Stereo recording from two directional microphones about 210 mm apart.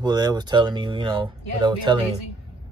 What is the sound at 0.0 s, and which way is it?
Speech, 20° right (ahead or behind).